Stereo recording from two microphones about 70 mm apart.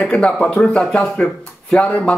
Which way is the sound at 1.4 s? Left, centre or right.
Centre.